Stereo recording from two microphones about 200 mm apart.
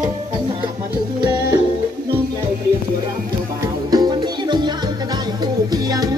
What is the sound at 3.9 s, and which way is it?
Music, 20° right (ahead or behind).